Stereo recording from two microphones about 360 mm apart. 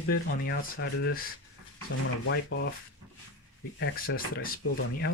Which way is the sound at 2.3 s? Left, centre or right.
Left.